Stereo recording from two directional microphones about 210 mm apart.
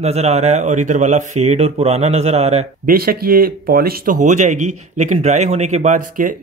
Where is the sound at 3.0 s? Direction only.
45° right (ahead or behind).